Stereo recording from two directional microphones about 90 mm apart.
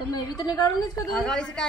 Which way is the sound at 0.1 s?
50° left (ahead or behind).